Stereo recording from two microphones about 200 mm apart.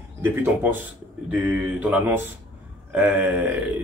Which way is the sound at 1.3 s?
10° right (ahead or behind).